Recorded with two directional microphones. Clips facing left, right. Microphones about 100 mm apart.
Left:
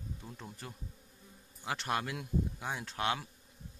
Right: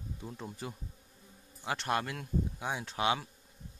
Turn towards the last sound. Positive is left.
turn(degrees=-5)  # may be behind; listen again after turning